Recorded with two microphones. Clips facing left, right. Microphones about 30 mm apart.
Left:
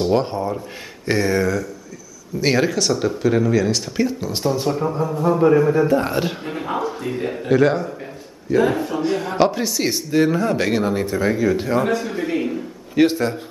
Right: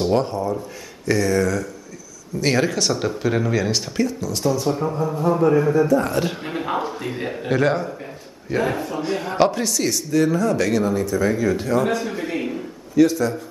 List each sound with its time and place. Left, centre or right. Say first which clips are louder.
0.2 s speech: even; left
2.4 s speech: left 2 dB; centre
4.0 s speech: left 1 dB; left
4.6 s speech: left 1 dB; centre
5.8 s a man's voice: even; left
6.4 s a man's voice: even; centre
9.6 s speech: left 1 dB; centre
9.8 s speech: left 2 dB; left
11.3 s speech: left 1 dB; centre
11.9 s speech: left 2 dB; centre
12.9 s a man's voice: even; left